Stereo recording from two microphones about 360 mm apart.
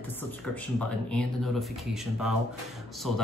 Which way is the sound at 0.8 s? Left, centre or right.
Centre.